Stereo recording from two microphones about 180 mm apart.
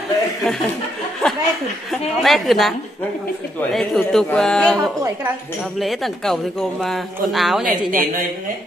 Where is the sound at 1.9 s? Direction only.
Centre (ahead or behind).